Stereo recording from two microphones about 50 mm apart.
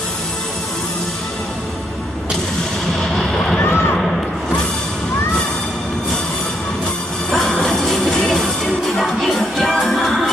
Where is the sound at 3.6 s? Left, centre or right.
Left.